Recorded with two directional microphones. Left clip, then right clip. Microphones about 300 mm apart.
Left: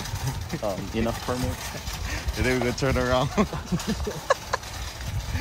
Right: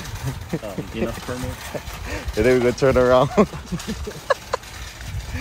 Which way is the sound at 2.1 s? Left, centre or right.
Left.